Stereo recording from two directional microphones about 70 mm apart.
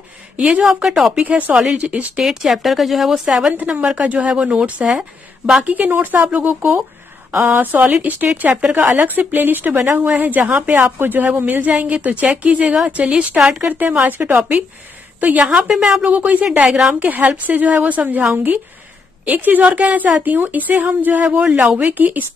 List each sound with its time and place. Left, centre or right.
0.4 s a woman's voice: centre
1.2 s speech: centre
2.2 s a woman's voice: centre
3.6 s speech: centre; by 10.0 s right
10.0 s a woman's voice: right
16.6 s a woman's voice: centre
17.0 s speech: right